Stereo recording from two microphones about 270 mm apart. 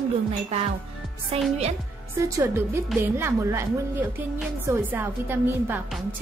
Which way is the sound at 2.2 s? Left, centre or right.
Centre.